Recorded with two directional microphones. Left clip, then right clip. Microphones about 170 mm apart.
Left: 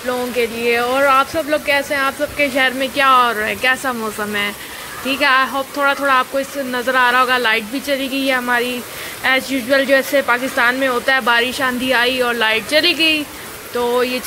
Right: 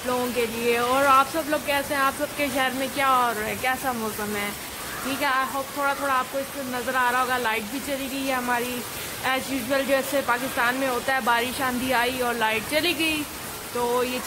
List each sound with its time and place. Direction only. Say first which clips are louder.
0.4 s speech: left 9 dB; centre (ahead or behind)
5.2 s speech: left 10 dB; 15° left (ahead or behind)